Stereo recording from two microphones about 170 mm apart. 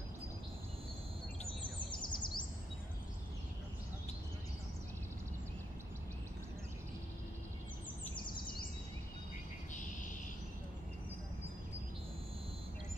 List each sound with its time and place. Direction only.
1.9 s bird vocalization: 25° left (ahead or behind)